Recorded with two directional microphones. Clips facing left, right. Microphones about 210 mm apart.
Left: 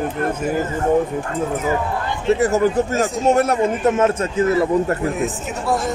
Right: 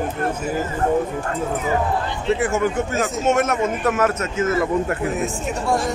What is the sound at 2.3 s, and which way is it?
A man's voice, 40° left (ahead or behind).